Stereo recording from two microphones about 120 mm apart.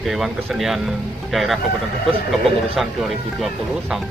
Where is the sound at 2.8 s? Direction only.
Centre (ahead or behind).